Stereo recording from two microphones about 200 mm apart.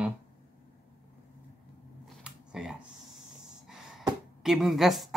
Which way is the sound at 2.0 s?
5° right (ahead or behind).